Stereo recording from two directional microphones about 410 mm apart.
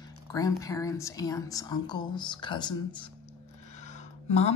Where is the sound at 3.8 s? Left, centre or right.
Centre.